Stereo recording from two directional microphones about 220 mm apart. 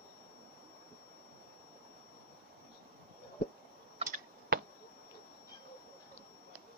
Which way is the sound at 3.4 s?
40° left (ahead or behind).